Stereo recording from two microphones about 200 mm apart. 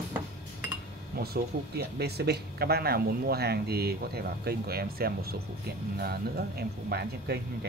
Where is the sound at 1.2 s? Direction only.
50° right (ahead or behind).